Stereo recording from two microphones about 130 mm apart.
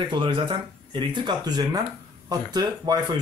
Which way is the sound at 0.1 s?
40° right (ahead or behind).